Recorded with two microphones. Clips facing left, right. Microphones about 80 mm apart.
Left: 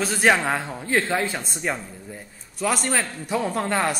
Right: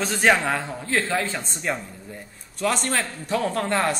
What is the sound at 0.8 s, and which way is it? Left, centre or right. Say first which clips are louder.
A man's voice: left 2 dB; centre.